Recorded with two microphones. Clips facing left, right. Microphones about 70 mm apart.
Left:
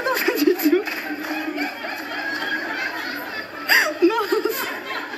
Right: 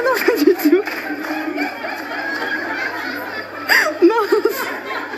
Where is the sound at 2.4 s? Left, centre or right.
Right.